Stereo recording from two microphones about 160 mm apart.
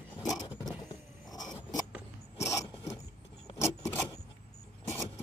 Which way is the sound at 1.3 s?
25° left (ahead or behind).